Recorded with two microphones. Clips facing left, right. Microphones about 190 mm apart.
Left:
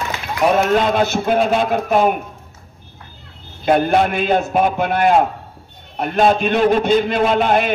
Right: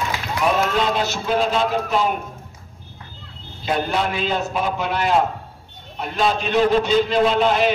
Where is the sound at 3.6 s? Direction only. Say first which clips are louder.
Left 7 dB; 55° left (ahead or behind).